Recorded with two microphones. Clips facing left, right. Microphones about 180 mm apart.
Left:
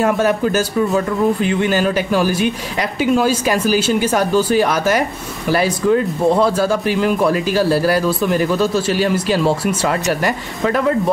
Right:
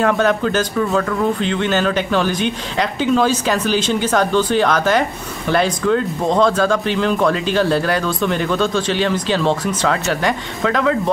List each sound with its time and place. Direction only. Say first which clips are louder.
0.0 s speech: left 1 dB; 10° left (ahead or behind)